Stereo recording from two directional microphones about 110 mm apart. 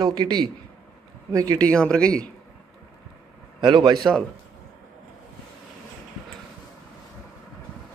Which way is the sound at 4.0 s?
5° left (ahead or behind).